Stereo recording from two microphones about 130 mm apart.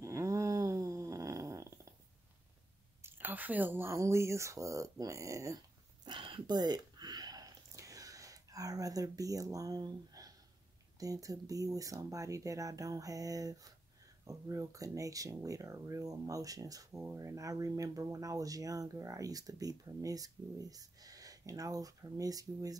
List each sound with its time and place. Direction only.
0.0 s snoring: 25° right (ahead or behind)
3.0 s speech: 15° right (ahead or behind)
6.0 s a sound: 40° right (ahead or behind)
11.0 s speech: 25° right (ahead or behind)